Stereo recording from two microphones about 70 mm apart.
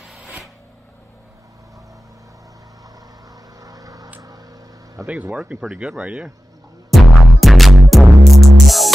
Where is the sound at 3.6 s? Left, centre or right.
Right.